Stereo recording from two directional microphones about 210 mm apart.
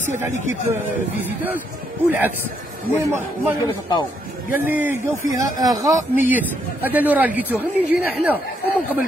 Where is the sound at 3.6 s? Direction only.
20° left (ahead or behind).